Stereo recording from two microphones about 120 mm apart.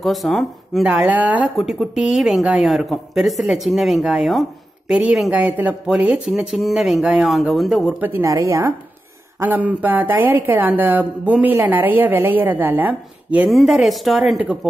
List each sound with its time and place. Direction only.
0.0 s a woman's voice: centre (ahead or behind)
0.8 s speech: 10° right (ahead or behind)
1.6 s a woman's voice: centre (ahead or behind)
8.2 s a woman's voice: 25° right (ahead or behind)
9.4 s speech: 15° right (ahead or behind)
13.5 s a woman's voice: centre (ahead or behind)